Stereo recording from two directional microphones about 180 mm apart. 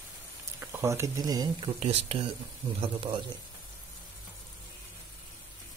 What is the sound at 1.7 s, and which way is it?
Speech, 35° right (ahead or behind).